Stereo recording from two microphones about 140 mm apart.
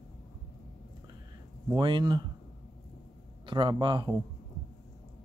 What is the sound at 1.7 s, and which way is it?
Speech, 30° right (ahead or behind).